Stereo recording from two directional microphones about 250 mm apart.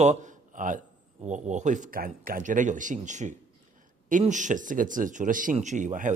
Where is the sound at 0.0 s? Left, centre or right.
Right.